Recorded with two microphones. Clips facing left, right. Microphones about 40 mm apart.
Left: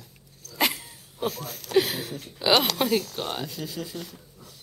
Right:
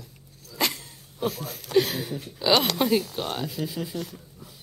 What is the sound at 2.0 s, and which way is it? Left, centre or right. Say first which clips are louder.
Speech: right 3 dB; centre.